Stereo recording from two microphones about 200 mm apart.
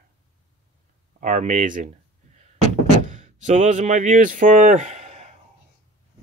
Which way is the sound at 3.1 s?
35° right (ahead or behind).